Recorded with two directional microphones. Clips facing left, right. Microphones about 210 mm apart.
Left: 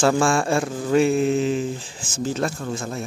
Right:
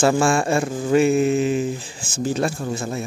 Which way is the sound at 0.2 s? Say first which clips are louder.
Right 1 dB; 5° right (ahead or behind).